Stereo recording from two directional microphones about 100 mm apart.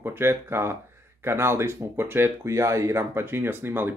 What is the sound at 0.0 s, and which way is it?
Speech, 25° right (ahead or behind).